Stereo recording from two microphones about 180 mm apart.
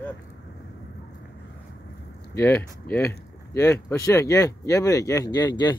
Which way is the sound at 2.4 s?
10° left (ahead or behind).